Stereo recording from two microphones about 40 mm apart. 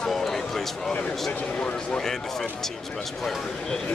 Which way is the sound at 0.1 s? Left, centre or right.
Centre.